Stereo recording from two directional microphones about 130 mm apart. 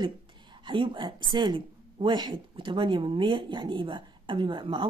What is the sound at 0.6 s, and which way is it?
Speech, 40° right (ahead or behind).